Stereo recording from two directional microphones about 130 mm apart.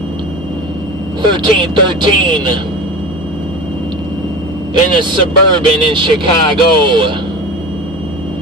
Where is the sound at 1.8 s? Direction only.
40° right (ahead or behind).